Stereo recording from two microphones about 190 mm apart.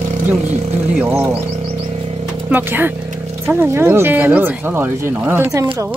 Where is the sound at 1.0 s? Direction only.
10° right (ahead or behind).